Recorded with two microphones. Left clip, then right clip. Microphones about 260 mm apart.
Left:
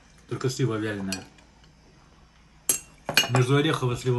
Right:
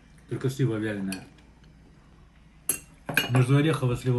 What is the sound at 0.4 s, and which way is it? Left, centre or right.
Speech, left.